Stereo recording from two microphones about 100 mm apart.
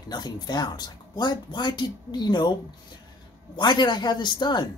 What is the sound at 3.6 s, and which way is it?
Speech, 50° left (ahead or behind).